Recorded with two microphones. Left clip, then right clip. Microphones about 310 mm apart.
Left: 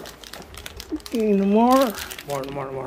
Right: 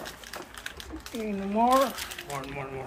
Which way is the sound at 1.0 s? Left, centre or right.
Left.